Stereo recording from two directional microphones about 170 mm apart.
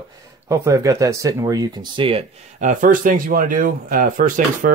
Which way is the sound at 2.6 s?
50° right (ahead or behind).